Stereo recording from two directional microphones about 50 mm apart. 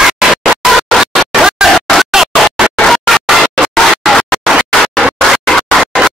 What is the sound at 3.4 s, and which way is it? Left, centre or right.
Music, centre.